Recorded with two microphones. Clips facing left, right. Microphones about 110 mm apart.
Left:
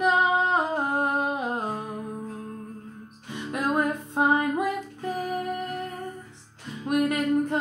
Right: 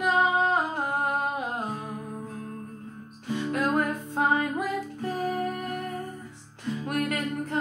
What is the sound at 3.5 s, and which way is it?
Music, 20° left (ahead or behind).